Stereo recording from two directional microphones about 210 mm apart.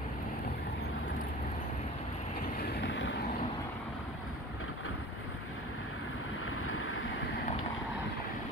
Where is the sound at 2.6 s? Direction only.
60° left (ahead or behind).